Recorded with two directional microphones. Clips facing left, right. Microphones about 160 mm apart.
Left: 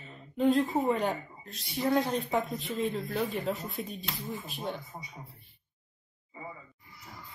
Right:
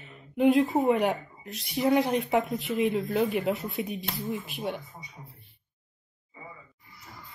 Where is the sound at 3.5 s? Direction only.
75° right (ahead or behind).